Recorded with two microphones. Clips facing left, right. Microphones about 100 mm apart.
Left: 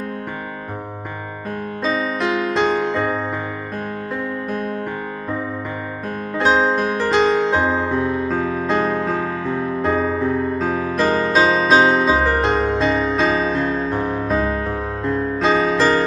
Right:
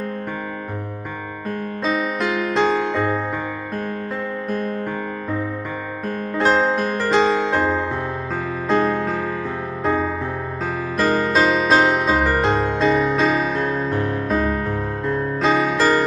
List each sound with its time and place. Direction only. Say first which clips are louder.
2.6 s music: right 1 dB; 10° left (ahead or behind)
6.3 s music: left 1 dB; centre (ahead or behind)
13.9 s music: left 1 dB; 20° left (ahead or behind)
14.2 s music: left 1 dB; centre (ahead or behind)